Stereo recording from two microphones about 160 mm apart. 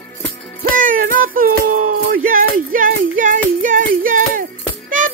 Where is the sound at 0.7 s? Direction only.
60° right (ahead or behind).